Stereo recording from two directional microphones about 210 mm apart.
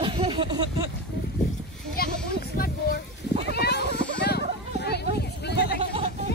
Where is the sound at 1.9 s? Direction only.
45° left (ahead or behind).